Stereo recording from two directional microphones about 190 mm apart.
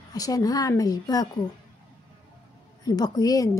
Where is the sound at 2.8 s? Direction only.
20° left (ahead or behind).